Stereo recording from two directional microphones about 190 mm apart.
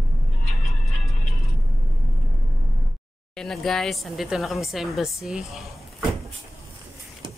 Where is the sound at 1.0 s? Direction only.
Centre (ahead or behind).